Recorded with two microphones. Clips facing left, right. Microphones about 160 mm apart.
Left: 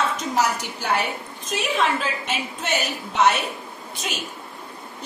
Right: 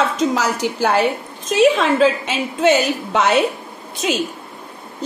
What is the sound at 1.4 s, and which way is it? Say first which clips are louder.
A woman's voice: right 9 dB; 90° right.